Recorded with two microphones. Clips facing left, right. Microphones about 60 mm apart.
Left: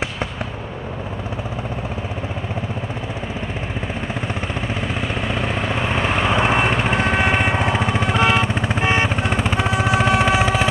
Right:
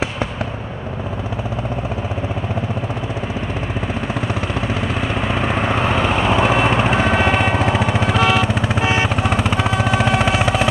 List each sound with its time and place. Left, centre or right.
7.2 s vehicle: centre
8.5 s vehicle: centre
9.4 s vehicle: centre